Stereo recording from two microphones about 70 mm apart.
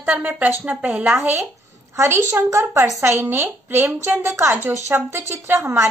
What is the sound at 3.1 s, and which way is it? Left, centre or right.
Speech, right.